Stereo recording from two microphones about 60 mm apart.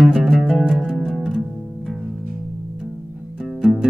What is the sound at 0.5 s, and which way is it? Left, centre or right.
Music, centre.